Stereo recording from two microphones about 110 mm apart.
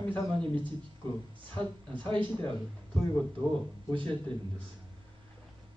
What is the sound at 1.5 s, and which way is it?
Speech, 50° right (ahead or behind).